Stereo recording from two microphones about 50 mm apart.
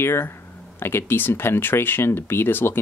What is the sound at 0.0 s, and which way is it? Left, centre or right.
Speech, left.